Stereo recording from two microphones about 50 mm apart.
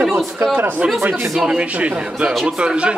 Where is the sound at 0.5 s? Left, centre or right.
Right.